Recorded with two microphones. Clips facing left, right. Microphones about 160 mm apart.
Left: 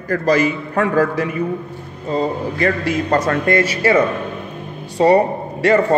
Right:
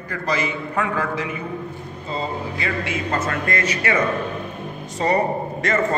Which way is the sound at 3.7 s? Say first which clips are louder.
Left 6 dB; 30° left (ahead or behind).